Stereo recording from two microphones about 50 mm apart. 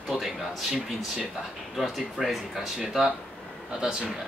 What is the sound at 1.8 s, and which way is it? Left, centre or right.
Speech, centre.